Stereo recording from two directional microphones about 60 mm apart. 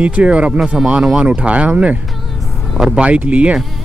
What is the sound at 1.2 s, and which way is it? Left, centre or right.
Speech, right.